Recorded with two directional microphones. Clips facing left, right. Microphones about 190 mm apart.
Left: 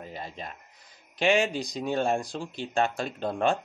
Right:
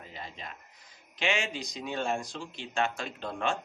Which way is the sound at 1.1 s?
35° left (ahead or behind).